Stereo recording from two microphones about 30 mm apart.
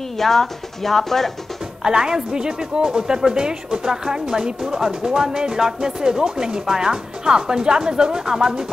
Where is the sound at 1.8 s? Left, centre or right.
Right.